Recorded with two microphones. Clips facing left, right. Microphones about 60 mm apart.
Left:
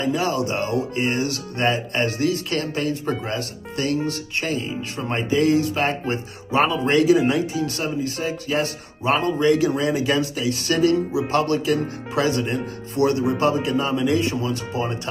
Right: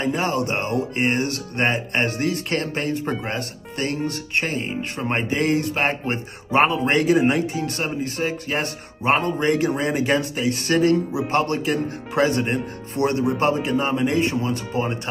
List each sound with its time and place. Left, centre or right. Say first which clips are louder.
0.0 s music: even; right